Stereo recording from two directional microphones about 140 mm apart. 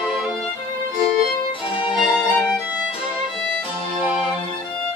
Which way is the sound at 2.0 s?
Centre (ahead or behind).